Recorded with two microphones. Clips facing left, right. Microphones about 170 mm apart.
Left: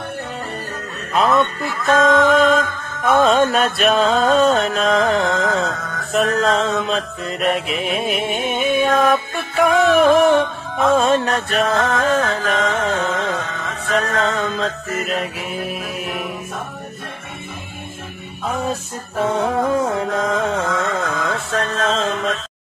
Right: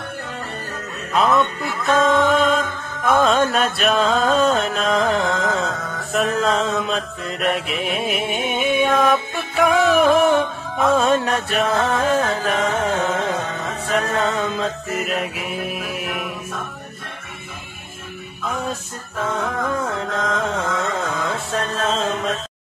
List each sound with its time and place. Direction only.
1.1 s music: centre (ahead or behind)
13.4 s music: 30° right (ahead or behind)
13.9 s music: 10° right (ahead or behind)
19.1 s music: 25° left (ahead or behind)
20.1 s music: 5° left (ahead or behind)